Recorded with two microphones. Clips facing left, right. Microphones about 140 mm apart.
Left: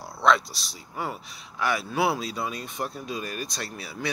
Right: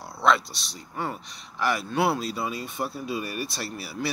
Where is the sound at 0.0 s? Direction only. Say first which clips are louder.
Left 1 dB; centre (ahead or behind).